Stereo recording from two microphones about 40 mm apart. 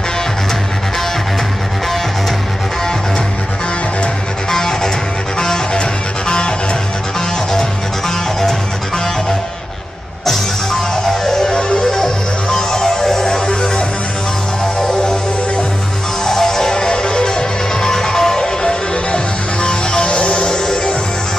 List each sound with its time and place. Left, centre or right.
4.5 s music: centre
8.4 s music: centre